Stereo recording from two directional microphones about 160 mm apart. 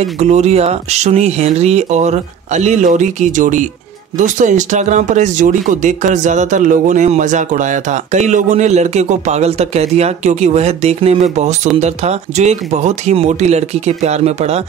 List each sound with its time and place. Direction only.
0.2 s speech: 45° right (ahead or behind)